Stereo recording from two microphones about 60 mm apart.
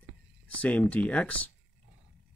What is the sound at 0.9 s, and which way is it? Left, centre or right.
Speech, left.